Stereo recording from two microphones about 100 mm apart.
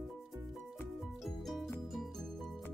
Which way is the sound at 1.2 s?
Centre (ahead or behind).